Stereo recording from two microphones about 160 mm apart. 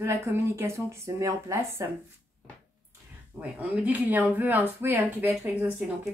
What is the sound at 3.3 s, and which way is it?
Speech, 10° right (ahead or behind).